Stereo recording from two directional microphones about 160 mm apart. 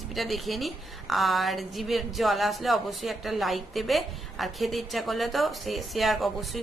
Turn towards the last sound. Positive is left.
turn(degrees=0)  # may be behind; listen again after turning